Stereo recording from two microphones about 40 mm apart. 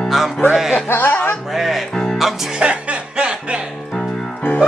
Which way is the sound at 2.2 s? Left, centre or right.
Centre.